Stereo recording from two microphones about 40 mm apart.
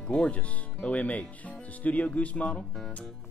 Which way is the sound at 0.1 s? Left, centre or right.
Left.